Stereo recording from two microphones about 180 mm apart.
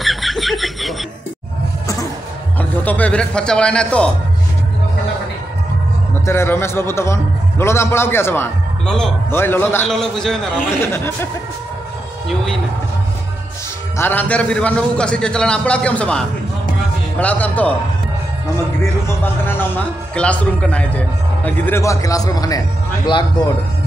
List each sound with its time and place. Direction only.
0.0 s snicker: centre (ahead or behind)
2.8 s speech: 10° left (ahead or behind)
6.2 s a man's voice: 15° left (ahead or behind)
10.8 s a man's voice: 15° left (ahead or behind)
13.9 s a man's voice: 10° left (ahead or behind)
18.8 s a man's voice: 15° left (ahead or behind)